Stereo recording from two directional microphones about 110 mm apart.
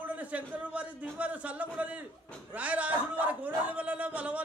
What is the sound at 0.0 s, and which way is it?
A man's voice, 15° right (ahead or behind).